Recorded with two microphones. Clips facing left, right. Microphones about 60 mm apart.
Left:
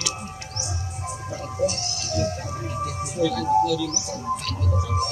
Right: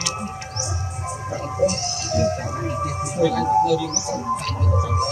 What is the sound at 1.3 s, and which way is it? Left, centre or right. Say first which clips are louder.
Music: right 4 dB; right.